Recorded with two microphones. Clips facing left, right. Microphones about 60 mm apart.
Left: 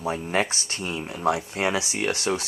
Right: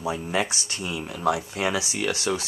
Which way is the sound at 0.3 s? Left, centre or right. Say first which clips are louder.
Left 1 dB; left.